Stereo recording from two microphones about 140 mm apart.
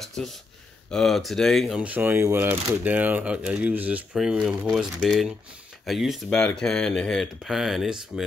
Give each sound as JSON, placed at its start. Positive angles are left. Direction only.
{"t": 0.0, "sound": "speech", "side_deg": 0}
{"t": 1.8, "sound": "speech", "side_deg": -10}